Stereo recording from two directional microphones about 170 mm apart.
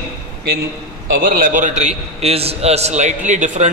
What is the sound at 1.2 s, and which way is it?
A man's voice, 55° right (ahead or behind).